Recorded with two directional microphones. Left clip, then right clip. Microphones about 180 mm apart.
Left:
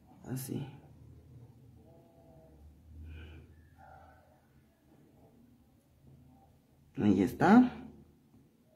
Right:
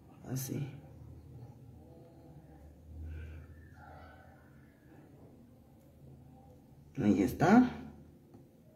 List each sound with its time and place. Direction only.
0.2 s speech: 25° left (ahead or behind)
7.0 s speech: 30° left (ahead or behind)